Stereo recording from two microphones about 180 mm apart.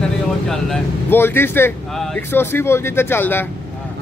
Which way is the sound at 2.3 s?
10° left (ahead or behind).